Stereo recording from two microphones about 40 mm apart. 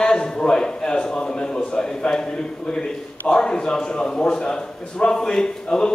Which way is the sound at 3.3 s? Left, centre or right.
Centre.